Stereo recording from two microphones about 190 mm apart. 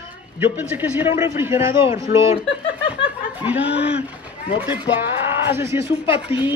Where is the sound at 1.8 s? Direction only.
30° left (ahead or behind).